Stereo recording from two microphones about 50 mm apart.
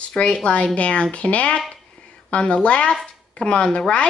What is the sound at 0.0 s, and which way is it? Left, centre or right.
A child's voice, left.